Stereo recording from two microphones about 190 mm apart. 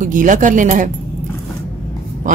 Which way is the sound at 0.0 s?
45° right (ahead or behind).